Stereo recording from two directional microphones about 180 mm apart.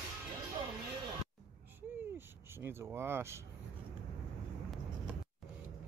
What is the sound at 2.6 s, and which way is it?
Speech, 15° right (ahead or behind).